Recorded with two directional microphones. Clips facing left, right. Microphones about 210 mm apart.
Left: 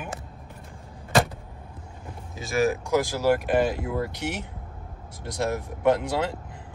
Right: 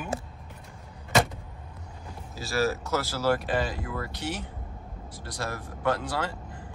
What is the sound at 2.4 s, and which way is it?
Speech, 15° left (ahead or behind).